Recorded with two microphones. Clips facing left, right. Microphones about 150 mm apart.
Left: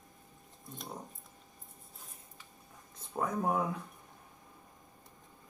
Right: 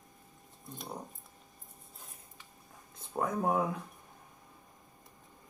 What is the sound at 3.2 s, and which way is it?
Speech, 5° right (ahead or behind).